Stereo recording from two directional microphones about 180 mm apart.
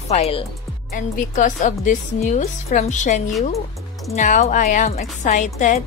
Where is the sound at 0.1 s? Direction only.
35° left (ahead or behind).